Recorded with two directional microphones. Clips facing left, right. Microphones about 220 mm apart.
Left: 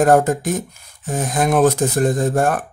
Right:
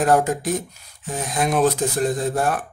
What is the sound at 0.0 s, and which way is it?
Speech, 45° left (ahead or behind).